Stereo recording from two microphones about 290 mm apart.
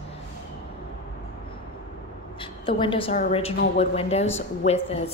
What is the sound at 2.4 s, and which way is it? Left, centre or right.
A woman's voice, centre.